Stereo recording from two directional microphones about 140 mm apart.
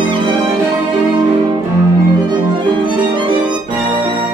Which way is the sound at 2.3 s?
35° right (ahead or behind).